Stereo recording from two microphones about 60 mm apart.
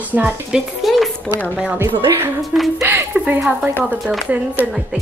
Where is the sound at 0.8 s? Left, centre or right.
Centre.